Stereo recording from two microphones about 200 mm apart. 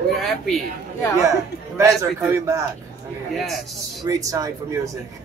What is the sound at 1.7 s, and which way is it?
Speech, 15° right (ahead or behind).